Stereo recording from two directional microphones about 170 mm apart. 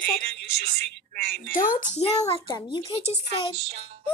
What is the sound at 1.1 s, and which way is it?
Speech, 65° right (ahead or behind).